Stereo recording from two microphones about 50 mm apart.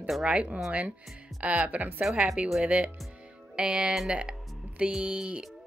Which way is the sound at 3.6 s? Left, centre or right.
Centre.